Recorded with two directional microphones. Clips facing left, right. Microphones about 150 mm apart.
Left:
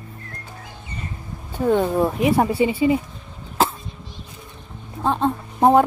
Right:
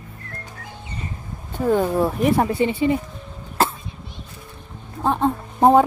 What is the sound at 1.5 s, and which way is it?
Speech, centre (ahead or behind).